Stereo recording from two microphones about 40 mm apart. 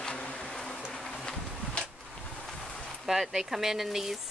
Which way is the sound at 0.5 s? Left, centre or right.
Centre.